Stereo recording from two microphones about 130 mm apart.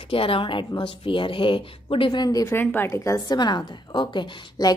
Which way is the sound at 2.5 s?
15° left (ahead or behind).